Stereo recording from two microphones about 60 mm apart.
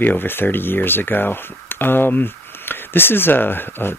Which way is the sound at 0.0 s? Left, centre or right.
Left.